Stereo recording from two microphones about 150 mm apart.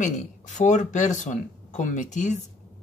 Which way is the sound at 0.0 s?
55° left (ahead or behind).